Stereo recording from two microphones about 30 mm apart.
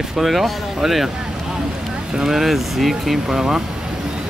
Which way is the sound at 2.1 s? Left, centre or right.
Centre.